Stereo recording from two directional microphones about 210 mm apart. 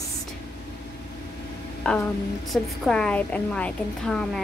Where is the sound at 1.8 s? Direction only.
5° left (ahead or behind).